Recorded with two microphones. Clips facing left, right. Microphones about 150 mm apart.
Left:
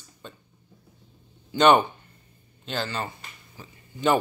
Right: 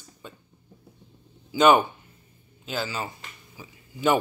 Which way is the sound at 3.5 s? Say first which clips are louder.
Even; 5° right (ahead or behind).